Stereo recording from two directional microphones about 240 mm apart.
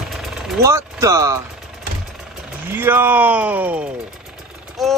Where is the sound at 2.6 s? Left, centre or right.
Centre.